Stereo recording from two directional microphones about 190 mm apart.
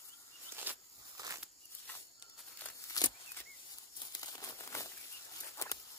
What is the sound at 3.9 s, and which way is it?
Crumpling, 20° left (ahead or behind).